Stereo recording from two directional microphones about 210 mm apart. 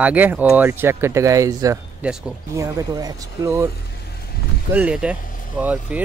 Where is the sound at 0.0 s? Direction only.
10° right (ahead or behind).